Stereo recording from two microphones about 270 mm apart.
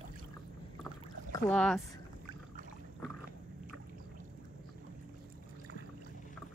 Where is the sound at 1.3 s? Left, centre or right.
Centre.